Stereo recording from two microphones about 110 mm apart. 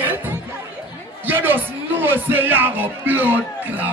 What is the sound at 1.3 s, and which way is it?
Music, 20° right (ahead or behind).